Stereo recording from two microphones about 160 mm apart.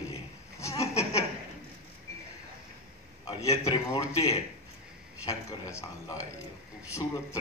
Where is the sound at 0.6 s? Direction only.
20° left (ahead or behind).